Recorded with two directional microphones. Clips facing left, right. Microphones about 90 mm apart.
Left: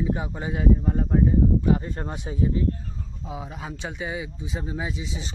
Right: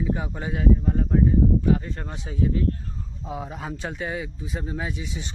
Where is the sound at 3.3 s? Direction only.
5° left (ahead or behind).